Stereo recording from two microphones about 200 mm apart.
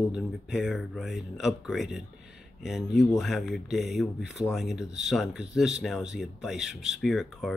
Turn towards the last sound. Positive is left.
turn(degrees=0)  # may be behind; listen again after turning